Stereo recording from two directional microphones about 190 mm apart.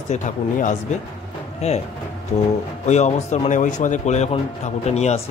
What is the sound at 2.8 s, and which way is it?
A man's voice, 35° left (ahead or behind).